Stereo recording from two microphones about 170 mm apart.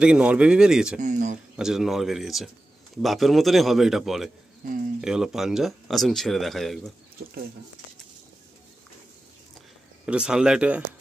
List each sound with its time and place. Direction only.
0.0 s speech: 5° right (ahead or behind)
1.0 s speech: 45° right (ahead or behind)
1.6 s speech: 5° right (ahead or behind)
4.6 s speech: 55° right (ahead or behind)
5.0 s speech: 5° right (ahead or behind)
10.0 s speech: 5° right (ahead or behind)